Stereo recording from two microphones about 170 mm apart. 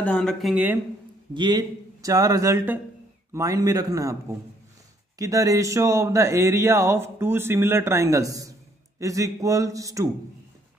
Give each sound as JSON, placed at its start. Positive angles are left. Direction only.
{"t": 0.0, "sound": "speech", "side_deg": 5}
{"t": 1.3, "sound": "a man's voice", "side_deg": -25}